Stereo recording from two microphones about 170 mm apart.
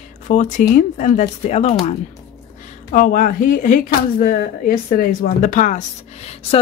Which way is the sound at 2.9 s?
50° left (ahead or behind).